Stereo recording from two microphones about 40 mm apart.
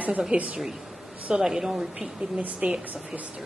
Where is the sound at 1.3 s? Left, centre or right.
Centre.